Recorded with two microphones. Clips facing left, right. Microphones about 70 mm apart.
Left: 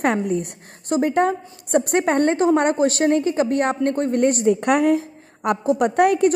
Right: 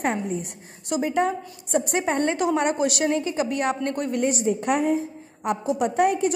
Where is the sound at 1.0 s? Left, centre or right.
Left.